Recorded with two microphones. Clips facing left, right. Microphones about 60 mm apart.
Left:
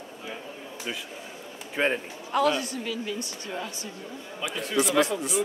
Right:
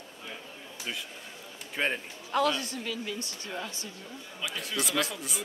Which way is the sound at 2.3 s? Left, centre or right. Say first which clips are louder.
Left 3 dB; left.